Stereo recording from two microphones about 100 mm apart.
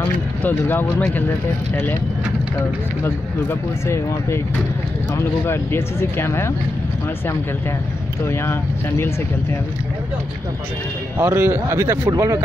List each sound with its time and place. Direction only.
0.4 s speech: 20° left (ahead or behind)
3.0 s speech: 25° left (ahead or behind)
8.3 s speech: 25° left (ahead or behind)
11.1 s speech: 25° right (ahead or behind)